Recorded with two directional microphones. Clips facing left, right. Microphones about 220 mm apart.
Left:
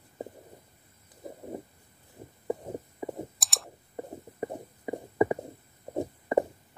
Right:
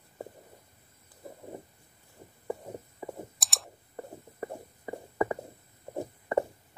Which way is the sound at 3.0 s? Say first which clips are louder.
Left 4 dB; 20° left (ahead or behind).